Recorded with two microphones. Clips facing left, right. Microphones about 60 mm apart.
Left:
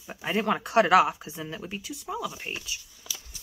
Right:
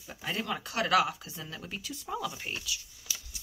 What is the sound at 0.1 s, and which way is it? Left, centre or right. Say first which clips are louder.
Speech: left 8 dB; left.